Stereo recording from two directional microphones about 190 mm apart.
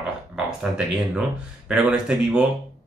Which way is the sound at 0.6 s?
5° right (ahead or behind).